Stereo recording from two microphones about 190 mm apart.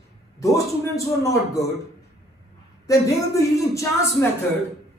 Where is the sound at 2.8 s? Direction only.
15° left (ahead or behind).